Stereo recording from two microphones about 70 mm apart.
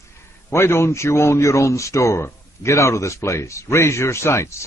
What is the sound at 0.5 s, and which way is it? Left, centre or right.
A man's voice, left.